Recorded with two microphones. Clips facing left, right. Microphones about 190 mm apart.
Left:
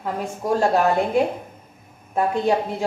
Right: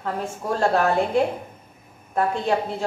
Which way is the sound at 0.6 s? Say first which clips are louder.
Even; 10° left (ahead or behind).